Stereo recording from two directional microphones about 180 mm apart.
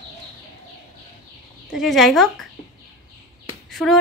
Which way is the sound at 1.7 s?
Centre (ahead or behind).